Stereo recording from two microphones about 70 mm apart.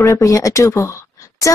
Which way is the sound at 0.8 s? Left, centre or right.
Left.